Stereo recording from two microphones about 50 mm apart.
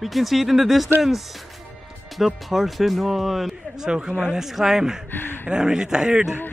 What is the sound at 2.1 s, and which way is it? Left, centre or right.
Speech, centre.